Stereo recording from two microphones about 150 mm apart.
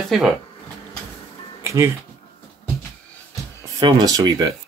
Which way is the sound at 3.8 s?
30° right (ahead or behind).